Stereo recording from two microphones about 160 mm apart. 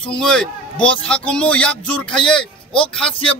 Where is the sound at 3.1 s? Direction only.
35° left (ahead or behind).